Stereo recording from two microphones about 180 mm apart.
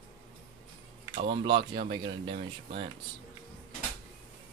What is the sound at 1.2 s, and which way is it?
Speech, 25° right (ahead or behind).